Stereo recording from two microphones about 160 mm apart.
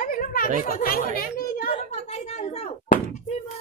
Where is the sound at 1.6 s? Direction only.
65° left (ahead or behind).